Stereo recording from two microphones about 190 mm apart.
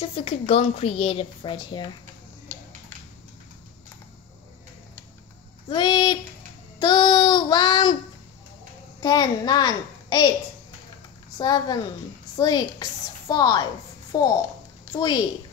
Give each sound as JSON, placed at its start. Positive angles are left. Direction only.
{"t": 0.0, "sound": "a woman's voice", "side_deg": 30}
{"t": 5.7, "sound": "a woman's voice", "side_deg": 25}
{"t": 6.8, "sound": "child singing", "side_deg": 25}
{"t": 9.0, "sound": "a woman's voice", "side_deg": 20}
{"t": 11.3, "sound": "a woman's voice", "side_deg": 20}